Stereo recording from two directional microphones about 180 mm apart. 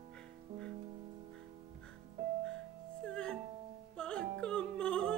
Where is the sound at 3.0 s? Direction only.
5° left (ahead or behind).